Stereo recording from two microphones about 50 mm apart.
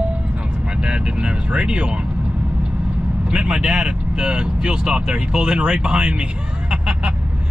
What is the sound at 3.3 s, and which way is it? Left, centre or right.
Speech, centre.